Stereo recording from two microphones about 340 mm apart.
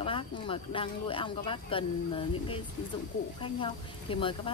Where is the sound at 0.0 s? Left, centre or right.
Centre.